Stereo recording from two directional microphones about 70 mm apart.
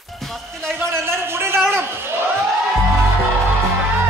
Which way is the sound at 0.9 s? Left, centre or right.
Right.